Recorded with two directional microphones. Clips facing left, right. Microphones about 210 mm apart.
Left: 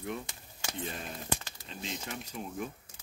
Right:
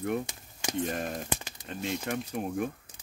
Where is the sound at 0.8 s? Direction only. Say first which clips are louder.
Right 8 dB; 50° right (ahead or behind).